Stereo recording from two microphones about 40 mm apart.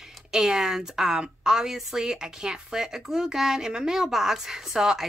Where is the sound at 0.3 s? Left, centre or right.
Centre.